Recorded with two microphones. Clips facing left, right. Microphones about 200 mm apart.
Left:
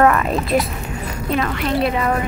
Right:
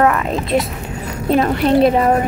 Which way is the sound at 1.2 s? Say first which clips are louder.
Right 7 dB; 40° right (ahead or behind).